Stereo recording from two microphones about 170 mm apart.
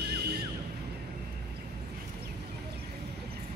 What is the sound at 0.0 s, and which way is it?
Car alarm, 75° right (ahead or behind).